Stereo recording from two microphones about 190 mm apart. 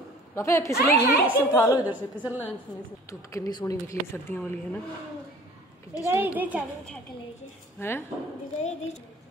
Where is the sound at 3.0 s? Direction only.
15° left (ahead or behind).